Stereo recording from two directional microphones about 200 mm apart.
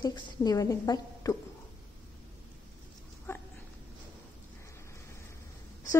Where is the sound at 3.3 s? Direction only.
10° left (ahead or behind).